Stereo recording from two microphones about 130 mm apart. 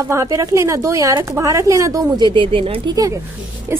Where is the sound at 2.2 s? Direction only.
40° right (ahead or behind).